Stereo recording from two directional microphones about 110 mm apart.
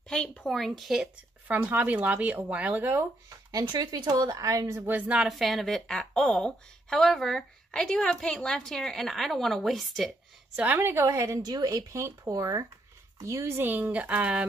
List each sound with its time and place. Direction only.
0.1 s a woman's voice: 5° left (ahead or behind)
1.5 s speech: 15° right (ahead or behind)
3.5 s speech: 40° right (ahead or behind); by 5.3 s 10° right (ahead or behind)
5.3 s a woman's voice: centre (ahead or behind)
10.5 s a woman's voice: 15° right (ahead or behind)